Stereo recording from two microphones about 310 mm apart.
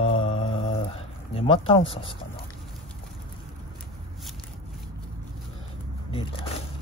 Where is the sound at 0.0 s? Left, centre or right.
Centre.